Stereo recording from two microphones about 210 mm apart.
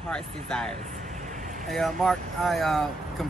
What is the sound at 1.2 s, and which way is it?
Vehicle, 35° right (ahead or behind).